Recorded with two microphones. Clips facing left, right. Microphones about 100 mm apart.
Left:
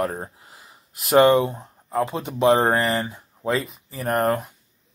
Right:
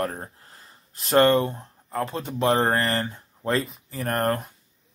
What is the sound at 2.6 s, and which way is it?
Speech, 5° left (ahead or behind).